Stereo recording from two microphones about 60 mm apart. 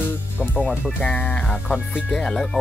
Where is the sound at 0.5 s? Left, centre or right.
Left.